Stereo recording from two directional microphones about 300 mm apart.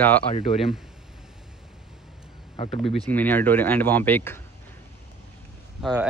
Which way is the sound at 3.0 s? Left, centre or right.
Centre.